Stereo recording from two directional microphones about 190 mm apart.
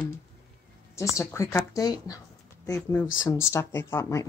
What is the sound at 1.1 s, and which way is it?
A woman's voice, 15° left (ahead or behind).